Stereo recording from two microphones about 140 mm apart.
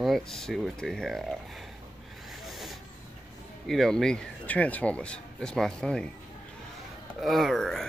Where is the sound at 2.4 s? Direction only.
Centre (ahead or behind).